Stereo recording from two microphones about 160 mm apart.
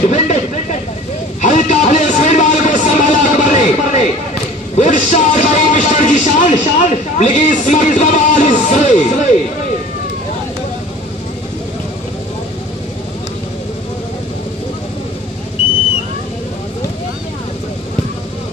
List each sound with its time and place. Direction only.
0.1 s vehicle: 45° left (ahead or behind)
1.4 s a sound: 50° left (ahead or behind)
4.7 s speech: 45° left (ahead or behind)